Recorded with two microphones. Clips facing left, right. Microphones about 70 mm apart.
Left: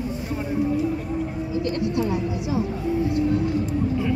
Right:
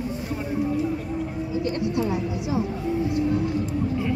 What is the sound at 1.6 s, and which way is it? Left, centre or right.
Music, centre.